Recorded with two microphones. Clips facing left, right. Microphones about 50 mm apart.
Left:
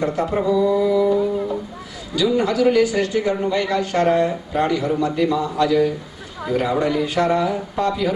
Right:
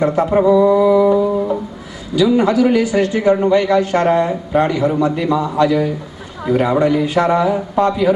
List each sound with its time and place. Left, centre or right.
0.0 s a man's voice: centre
0.7 s mantra: centre
2.1 s a man's voice: centre
6.8 s a man's voice: centre